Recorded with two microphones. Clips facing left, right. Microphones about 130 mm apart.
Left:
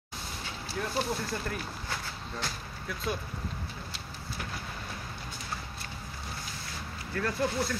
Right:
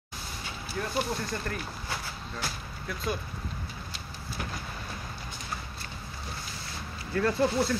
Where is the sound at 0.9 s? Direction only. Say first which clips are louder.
Right 1 dB; 5° left (ahead or behind).